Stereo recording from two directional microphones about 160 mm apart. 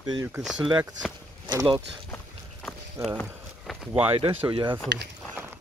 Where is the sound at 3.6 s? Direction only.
Centre (ahead or behind).